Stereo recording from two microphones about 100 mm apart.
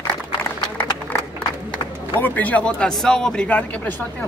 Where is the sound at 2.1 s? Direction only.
20° left (ahead or behind).